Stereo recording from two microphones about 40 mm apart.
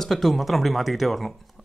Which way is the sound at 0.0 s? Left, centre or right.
Centre.